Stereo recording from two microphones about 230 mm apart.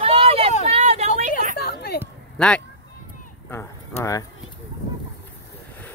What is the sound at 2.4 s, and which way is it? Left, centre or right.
Speech, centre.